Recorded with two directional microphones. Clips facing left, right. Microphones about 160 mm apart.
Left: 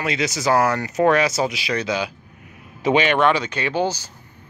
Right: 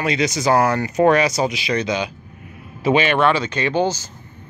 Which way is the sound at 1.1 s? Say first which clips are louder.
Right 1 dB; centre (ahead or behind).